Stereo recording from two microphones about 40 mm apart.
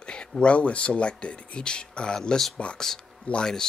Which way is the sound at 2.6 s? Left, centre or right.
Left.